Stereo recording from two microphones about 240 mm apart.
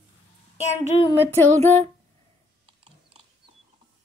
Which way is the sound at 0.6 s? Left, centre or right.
Left.